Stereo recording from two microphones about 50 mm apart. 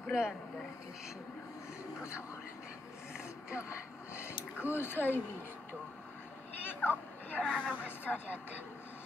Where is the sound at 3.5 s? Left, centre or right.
Left.